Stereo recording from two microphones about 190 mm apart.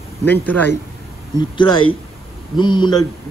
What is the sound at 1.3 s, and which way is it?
A man's voice, 25° left (ahead or behind).